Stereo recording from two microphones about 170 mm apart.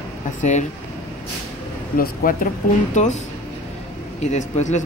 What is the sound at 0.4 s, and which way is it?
Speech, 45° left (ahead or behind).